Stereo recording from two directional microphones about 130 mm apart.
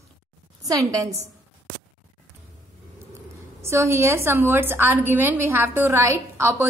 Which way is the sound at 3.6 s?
20° right (ahead or behind).